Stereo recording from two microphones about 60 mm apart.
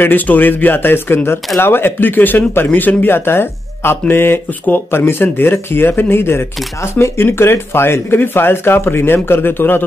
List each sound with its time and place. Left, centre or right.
0.0 s speech: left